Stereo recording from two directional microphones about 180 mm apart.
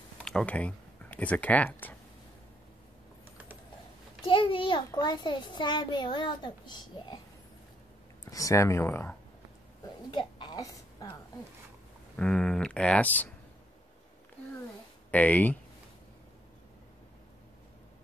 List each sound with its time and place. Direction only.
0.2 s speech: 5° left (ahead or behind)
4.3 s a child's voice: 30° left (ahead or behind)
8.3 s speech: 20° left (ahead or behind)
10.1 s a woman's voice: 25° left (ahead or behind)
12.2 s speech: 5° left (ahead or behind)
15.0 s speech: 10° left (ahead or behind)